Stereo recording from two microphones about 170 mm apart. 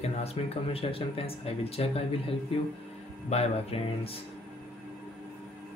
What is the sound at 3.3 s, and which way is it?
Speech, 35° left (ahead or behind).